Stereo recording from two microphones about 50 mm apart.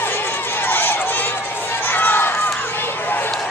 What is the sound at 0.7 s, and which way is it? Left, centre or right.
Run, left.